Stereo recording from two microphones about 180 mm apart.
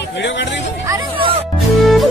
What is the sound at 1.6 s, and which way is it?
Music, centre (ahead or behind).